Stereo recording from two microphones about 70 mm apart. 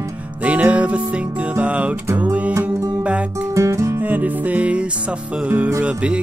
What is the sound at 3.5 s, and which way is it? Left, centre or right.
Music, right.